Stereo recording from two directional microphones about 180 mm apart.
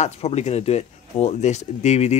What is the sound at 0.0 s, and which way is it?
Speech, 35° left (ahead or behind).